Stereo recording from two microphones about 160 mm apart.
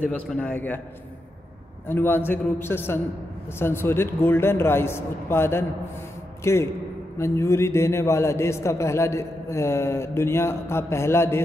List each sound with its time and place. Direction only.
0.0 s a man's voice: 10° left (ahead or behind)
1.9 s a man's voice: 15° left (ahead or behind)